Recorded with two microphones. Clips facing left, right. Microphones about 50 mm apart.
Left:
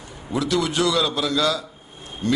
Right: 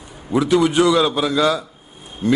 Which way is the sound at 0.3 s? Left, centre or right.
Right.